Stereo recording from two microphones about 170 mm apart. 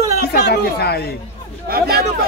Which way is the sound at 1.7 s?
65° right (ahead or behind).